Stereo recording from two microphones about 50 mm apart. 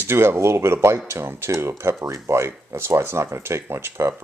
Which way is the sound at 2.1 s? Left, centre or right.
Right.